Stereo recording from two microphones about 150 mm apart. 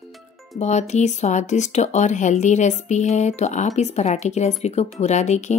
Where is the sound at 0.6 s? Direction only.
50° left (ahead or behind).